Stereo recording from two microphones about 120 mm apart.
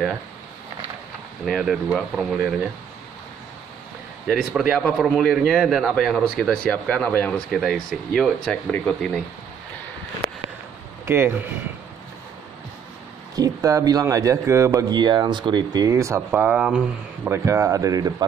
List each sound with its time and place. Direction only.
1.4 s a man's voice: centre (ahead or behind)
4.3 s a man's voice: 5° right (ahead or behind)
11.1 s speech: 15° right (ahead or behind)
13.4 s speech: 30° right (ahead or behind)
16.3 s speech: 10° right (ahead or behind)
17.3 s speech: 25° right (ahead or behind)